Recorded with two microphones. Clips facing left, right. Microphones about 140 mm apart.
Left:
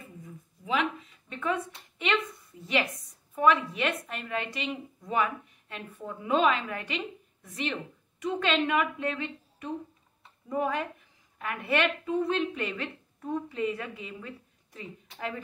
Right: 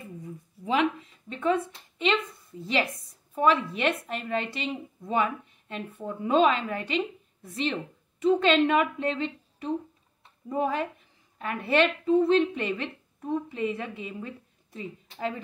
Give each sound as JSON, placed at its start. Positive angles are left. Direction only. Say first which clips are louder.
{"t": 1.3, "sound": "a woman's voice", "louder": "right 5 dB", "side_deg": -30}
{"t": 2.6, "sound": "a woman's voice", "louder": "right 1 dB", "side_deg": -30}